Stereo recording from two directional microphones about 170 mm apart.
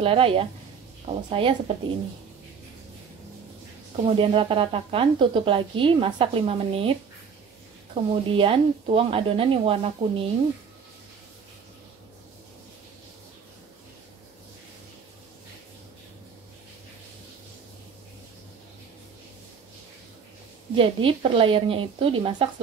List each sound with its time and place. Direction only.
0.0 s speech: 35° right (ahead or behind)
3.9 s speech: 35° right (ahead or behind)
20.7 s speech: 30° right (ahead or behind)